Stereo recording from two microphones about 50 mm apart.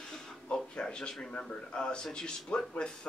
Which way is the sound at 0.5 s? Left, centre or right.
Centre.